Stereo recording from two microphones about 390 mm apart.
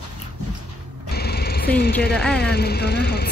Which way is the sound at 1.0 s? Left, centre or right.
Left.